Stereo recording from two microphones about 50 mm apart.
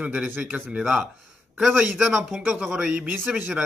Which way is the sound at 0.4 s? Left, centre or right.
Centre.